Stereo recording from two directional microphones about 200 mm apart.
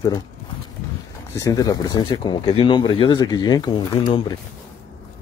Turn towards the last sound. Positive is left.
turn(degrees=25)  # may be behind; listen again after turning